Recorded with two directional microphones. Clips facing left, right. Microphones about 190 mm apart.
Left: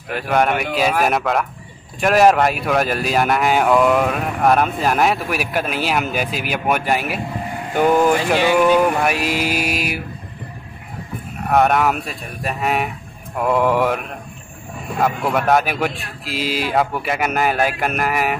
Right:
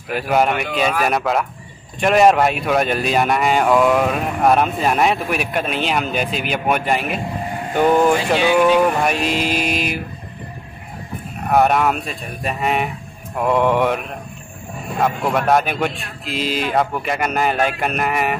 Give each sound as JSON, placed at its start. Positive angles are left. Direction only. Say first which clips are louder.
{"t": 0.1, "sound": "speech", "louder": "right 1 dB", "side_deg": -5}
{"t": 0.6, "sound": "speech", "louder": "left 1 dB", "side_deg": 5}
{"t": 7.7, "sound": "music", "louder": "even", "side_deg": 5}
{"t": 11.5, "sound": "speech", "louder": "even", "side_deg": 0}